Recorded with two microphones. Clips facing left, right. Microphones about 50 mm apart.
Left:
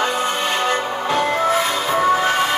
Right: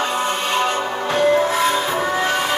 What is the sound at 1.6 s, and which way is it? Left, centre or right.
Music, right.